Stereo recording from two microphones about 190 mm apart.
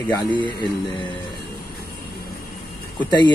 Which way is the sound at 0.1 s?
20° left (ahead or behind).